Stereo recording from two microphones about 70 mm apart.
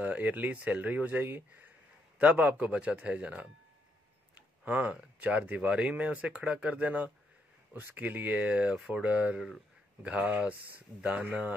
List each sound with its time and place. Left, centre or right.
0.0 s speech: right